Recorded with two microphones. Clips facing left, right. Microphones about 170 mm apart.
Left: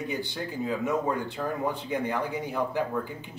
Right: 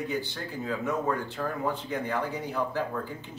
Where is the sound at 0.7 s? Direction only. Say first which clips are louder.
Left 1 dB; 15° left (ahead or behind).